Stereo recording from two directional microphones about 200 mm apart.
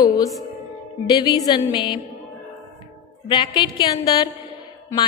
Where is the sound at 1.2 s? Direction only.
20° left (ahead or behind).